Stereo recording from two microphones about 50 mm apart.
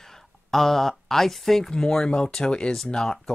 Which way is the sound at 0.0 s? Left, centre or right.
Centre.